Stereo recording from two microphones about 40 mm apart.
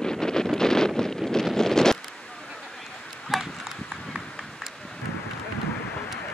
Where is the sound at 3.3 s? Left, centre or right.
Centre.